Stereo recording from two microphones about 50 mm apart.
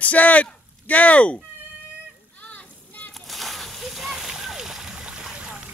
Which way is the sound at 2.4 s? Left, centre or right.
Left.